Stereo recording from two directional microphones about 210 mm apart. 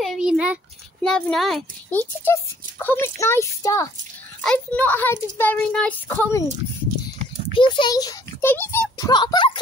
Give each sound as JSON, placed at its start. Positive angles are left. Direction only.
{"t": 0.0, "sound": "a sound", "side_deg": 0}
{"t": 1.0, "sound": "a child's voice", "side_deg": 5}
{"t": 7.5, "sound": "a child's voice", "side_deg": 25}